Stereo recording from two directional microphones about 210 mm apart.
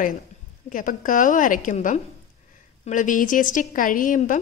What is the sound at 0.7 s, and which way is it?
A woman's voice, 40° left (ahead or behind).